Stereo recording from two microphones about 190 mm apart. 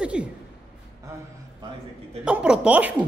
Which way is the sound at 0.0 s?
5° right (ahead or behind).